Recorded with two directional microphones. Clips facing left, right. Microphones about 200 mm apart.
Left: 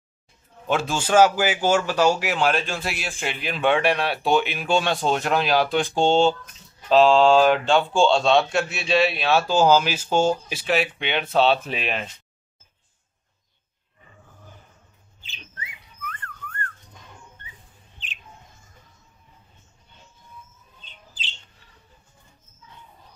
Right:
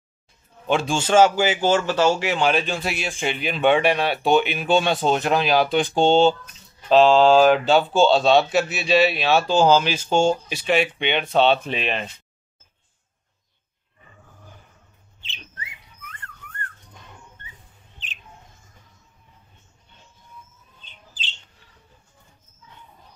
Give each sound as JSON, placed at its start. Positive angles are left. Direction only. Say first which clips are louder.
{"t": 0.7, "sound": "speech", "louder": "right 2 dB", "side_deg": 5}
{"t": 16.0, "sound": "whistling", "louder": "left 7 dB", "side_deg": -20}